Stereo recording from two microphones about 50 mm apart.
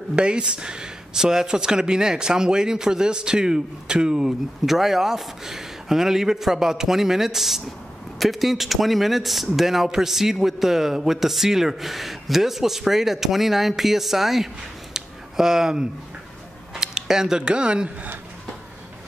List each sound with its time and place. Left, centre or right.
0.1 s speech: centre
15.0 s a sound: centre
16.7 s speech: centre